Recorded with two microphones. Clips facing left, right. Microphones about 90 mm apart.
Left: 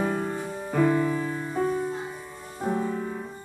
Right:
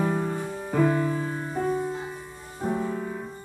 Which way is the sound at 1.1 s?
25° right (ahead or behind).